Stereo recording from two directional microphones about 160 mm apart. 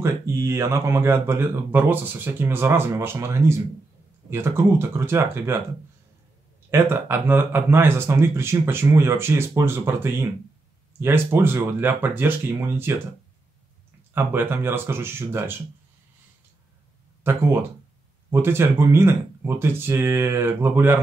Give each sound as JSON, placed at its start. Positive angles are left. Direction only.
{"t": 0.0, "sound": "speech", "side_deg": -15}
{"t": 6.7, "sound": "speech", "side_deg": -15}
{"t": 14.1, "sound": "speech", "side_deg": -15}
{"t": 17.2, "sound": "speech", "side_deg": -15}